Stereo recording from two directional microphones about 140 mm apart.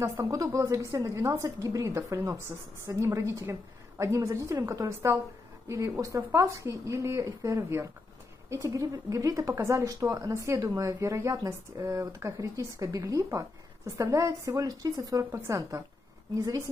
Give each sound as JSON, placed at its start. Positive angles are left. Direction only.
{"t": 0.0, "sound": "speech", "side_deg": -20}